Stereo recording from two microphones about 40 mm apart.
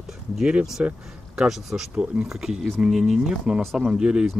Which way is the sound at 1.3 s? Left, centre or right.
Centre.